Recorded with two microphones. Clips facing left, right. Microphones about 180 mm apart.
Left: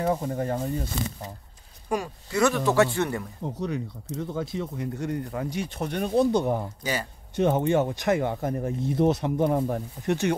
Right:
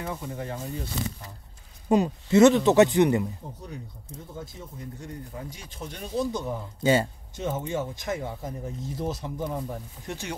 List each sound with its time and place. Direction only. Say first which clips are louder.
0.0 s speech: left 8 dB; 45° left (ahead or behind)
1.9 s speech: right 7 dB; 20° right (ahead or behind)
3.4 s speech: left 10 dB; 90° left; by 6.7 s 65° left (ahead or behind)
6.8 s speech: right 8 dB; 25° right (ahead or behind)
7.3 s speech: left 8 dB; 65° left (ahead or behind)